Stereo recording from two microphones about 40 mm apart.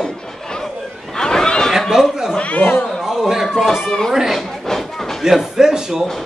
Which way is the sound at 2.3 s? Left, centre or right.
Left.